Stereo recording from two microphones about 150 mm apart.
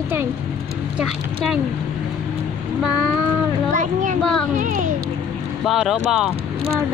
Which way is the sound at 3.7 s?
55° right (ahead or behind).